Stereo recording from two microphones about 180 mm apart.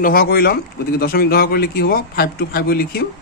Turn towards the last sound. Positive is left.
turn(degrees=55)  # may be behind; listen again after turning